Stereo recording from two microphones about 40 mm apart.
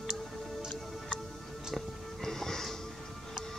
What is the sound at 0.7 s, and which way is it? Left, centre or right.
Music, left.